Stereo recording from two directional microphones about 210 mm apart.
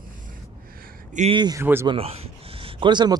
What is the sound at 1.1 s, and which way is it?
Speech, 30° right (ahead or behind).